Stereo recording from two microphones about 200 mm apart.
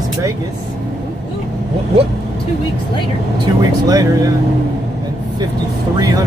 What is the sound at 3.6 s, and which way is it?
Speech, 20° right (ahead or behind).